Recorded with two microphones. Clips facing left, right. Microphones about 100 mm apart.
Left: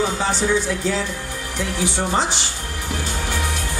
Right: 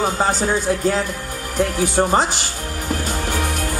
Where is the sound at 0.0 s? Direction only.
45° right (ahead or behind).